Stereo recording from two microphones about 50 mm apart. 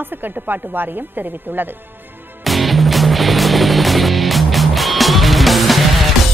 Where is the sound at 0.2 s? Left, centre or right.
Right.